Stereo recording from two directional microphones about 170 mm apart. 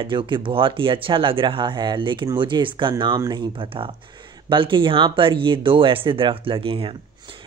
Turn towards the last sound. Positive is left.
turn(degrees=-30)  # may be behind; listen again after turning